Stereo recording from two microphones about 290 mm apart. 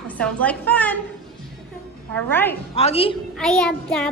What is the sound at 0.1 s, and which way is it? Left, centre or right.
Speech, centre.